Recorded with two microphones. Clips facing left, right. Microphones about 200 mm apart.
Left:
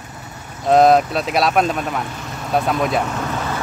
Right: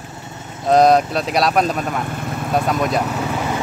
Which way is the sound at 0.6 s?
Centre (ahead or behind).